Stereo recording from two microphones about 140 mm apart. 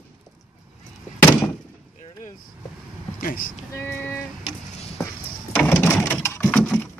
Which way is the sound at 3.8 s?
15° left (ahead or behind).